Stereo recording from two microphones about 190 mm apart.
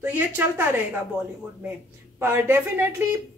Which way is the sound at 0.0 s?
10° right (ahead or behind).